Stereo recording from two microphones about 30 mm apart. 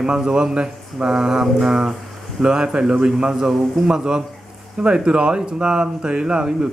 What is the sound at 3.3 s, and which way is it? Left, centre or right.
Speech, centre.